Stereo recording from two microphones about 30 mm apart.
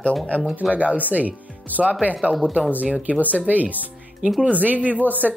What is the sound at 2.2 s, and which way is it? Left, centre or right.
Speech, right.